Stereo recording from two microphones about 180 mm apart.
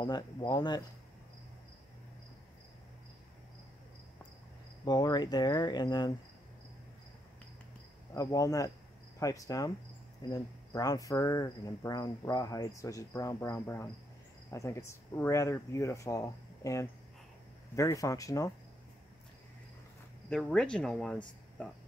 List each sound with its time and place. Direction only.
0.0 s cricket: 25° left (ahead or behind)
4.8 s cricket: 20° left (ahead or behind)
8.1 s cricket: 20° left (ahead or behind)
14.5 s speech: 15° left (ahead or behind)
20.2 s speech: 5° left (ahead or behind)